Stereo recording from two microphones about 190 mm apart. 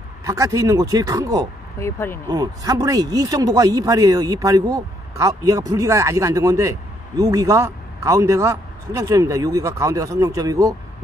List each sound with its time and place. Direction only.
0.2 s a man's voice: 15° right (ahead or behind)
1.8 s speech: 15° left (ahead or behind)
2.2 s a man's voice: 20° right (ahead or behind)